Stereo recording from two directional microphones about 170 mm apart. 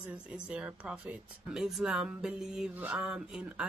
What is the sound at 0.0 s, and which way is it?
Speech, 5° right (ahead or behind).